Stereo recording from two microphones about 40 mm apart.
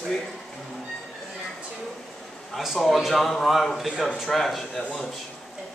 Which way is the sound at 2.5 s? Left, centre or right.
Centre.